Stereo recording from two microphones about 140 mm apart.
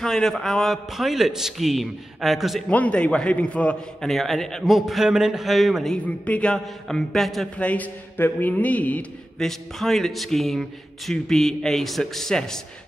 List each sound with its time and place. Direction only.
0.0 s a man's voice: 5° left (ahead or behind)
2.7 s a man's voice: 10° left (ahead or behind)
6.0 s a man's voice: 10° left (ahead or behind)